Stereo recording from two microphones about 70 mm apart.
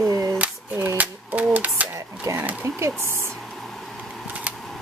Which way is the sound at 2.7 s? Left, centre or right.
Right.